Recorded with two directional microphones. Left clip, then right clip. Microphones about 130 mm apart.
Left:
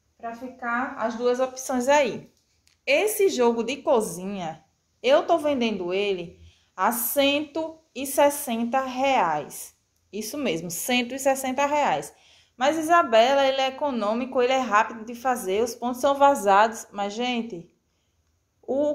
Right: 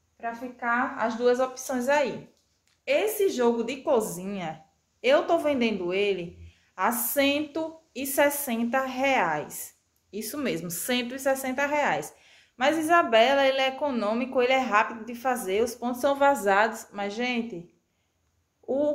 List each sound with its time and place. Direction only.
0.2 s a woman's voice: 30° left (ahead or behind)
18.7 s a woman's voice: 25° left (ahead or behind)